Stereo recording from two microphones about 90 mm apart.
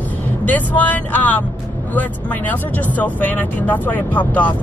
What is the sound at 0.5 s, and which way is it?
Speech, 20° left (ahead or behind).